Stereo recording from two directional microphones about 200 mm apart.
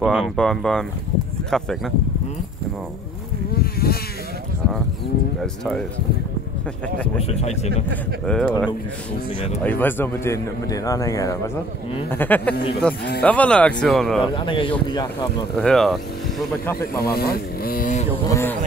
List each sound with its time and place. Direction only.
0.0 s speech: centre (ahead or behind)
3.5 s insect: 50° left (ahead or behind)
5.4 s speech: 5° left (ahead or behind)
7.2 s speech: 30° left (ahead or behind)
7.9 s a man's voice: 5° left (ahead or behind)
14.2 s speech: 25° left (ahead or behind)
15.5 s speech: 5° left (ahead or behind)
17.0 s vehicle: 50° left (ahead or behind)
18.2 s a sound: 15° left (ahead or behind)